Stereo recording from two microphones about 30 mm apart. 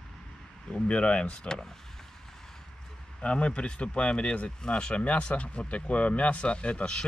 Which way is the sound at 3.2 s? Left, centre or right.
Left.